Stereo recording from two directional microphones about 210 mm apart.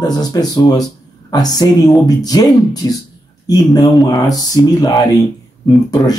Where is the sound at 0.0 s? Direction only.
20° left (ahead or behind).